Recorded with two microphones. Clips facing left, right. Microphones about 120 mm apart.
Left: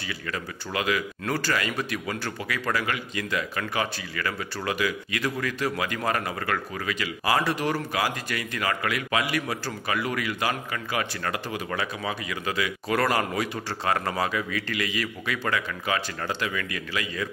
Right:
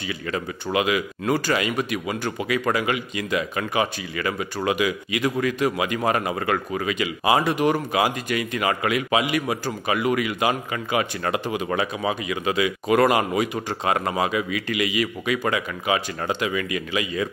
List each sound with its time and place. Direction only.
0.1 s speech: 20° right (ahead or behind)